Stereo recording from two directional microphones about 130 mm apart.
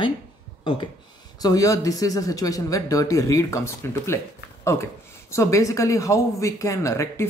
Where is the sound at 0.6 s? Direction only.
40° left (ahead or behind).